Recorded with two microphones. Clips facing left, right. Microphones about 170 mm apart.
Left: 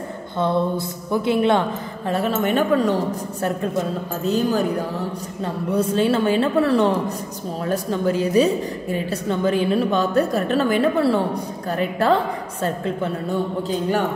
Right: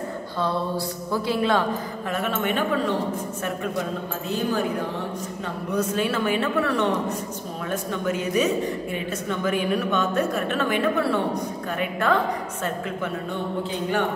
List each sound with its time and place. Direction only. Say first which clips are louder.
0.4 s a woman's voice: left 5 dB; 20° left (ahead or behind); by 2.9 s 40° left (ahead or behind)
4.3 s a woman's voice: left 5 dB; 40° left (ahead or behind)